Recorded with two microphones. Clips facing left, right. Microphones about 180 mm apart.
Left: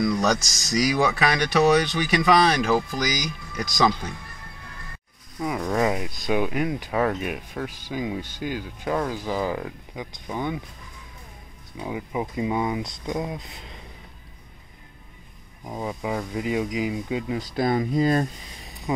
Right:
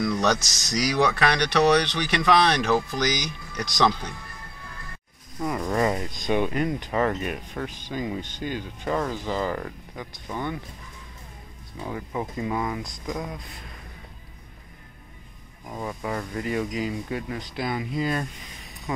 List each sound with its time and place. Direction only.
0.0 s speech: centre (ahead or behind)
5.4 s speech: centre (ahead or behind)
11.8 s speech: 10° left (ahead or behind)
15.6 s speech: 15° left (ahead or behind)
17.6 s speech: 40° left (ahead or behind)
18.9 s speech: 20° left (ahead or behind)